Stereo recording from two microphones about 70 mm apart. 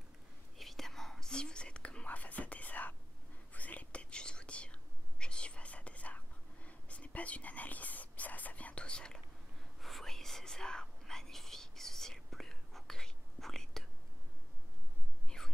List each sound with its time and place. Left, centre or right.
0.6 s whispering: centre
9.8 s whispering: centre
15.2 s whispering: centre